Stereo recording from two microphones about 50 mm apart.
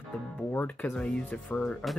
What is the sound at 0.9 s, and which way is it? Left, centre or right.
Speech, centre.